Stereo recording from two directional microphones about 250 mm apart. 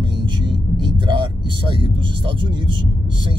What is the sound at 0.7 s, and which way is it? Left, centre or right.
Speech, centre.